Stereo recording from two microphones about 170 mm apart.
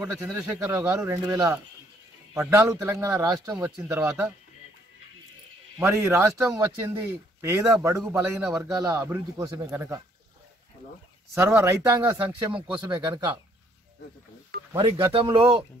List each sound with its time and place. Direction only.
0.2 s a man's voice: 15° right (ahead or behind)
5.8 s a man's voice: 15° right (ahead or behind)
11.3 s a man's voice: 15° right (ahead or behind)
12.5 s speech: 30° right (ahead or behind)
14.7 s a man's voice: 20° right (ahead or behind)